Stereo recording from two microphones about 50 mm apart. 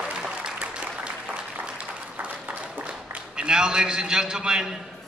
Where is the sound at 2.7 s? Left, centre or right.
Right.